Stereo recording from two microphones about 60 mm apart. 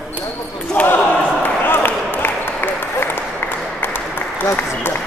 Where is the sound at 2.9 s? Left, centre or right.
Left.